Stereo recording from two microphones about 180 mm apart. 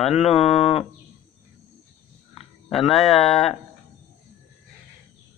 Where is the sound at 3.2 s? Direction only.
35° left (ahead or behind).